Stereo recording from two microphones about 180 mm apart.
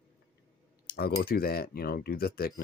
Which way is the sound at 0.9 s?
60° left (ahead or behind).